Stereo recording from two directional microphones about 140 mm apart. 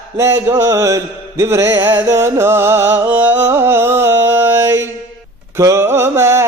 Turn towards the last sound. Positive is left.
turn(degrees=-20)  # may be behind; listen again after turning